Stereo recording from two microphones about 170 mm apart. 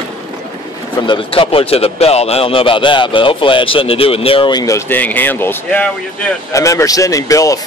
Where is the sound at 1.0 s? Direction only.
30° left (ahead or behind).